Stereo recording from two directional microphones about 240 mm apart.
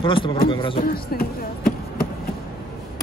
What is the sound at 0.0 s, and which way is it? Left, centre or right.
Speech, left.